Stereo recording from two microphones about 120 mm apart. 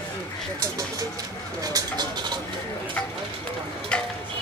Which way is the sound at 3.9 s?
10° left (ahead or behind).